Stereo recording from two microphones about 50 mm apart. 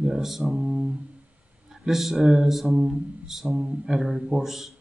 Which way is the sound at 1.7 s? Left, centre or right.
Centre.